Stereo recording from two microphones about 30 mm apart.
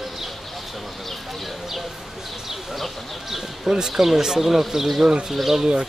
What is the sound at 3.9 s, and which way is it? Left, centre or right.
Speech, centre.